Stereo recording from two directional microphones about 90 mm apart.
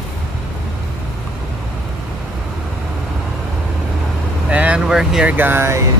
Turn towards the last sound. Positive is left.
turn(degrees=-25)  # may be behind; listen again after turning